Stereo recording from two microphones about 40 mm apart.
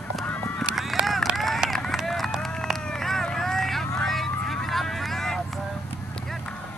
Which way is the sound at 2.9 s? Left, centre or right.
Centre.